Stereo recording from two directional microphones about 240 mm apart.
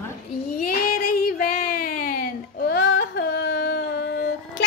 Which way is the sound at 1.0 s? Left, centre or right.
Left.